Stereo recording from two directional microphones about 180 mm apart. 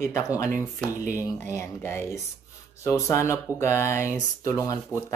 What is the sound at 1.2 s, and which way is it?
Speech, 15° left (ahead or behind).